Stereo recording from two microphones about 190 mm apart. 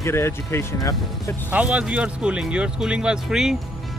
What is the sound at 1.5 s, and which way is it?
Speech, 5° right (ahead or behind).